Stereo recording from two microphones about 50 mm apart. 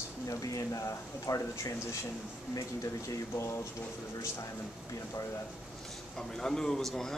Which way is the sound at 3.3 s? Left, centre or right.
Left.